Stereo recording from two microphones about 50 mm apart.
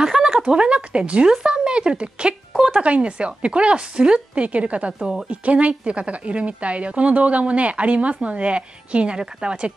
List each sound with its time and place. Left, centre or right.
0.1 s a sound: centre
0.5 s a woman's voice: right
4.9 s a woman's voice: centre
5.3 s a woman's voice: right